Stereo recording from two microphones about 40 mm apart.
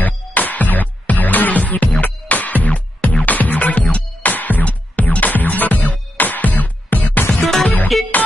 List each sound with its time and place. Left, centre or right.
0.0 s music: left
7.4 s music: centre